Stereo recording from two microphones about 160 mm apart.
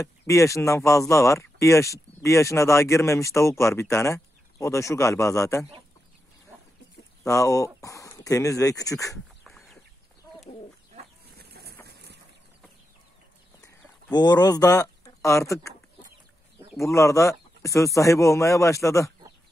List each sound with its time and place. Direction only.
0.0 s speech: 20° left (ahead or behind)
7.2 s speech: 20° left (ahead or behind)
9.4 s chicken: centre (ahead or behind)
11.3 s a sound: 80° right
14.1 s speech: 25° left (ahead or behind)
16.8 s speech: 20° left (ahead or behind)